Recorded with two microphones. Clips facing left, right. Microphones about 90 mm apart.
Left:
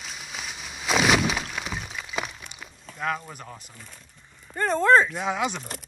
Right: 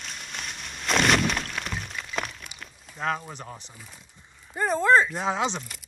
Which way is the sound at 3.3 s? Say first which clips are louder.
Right 1 dB; 25° right (ahead or behind).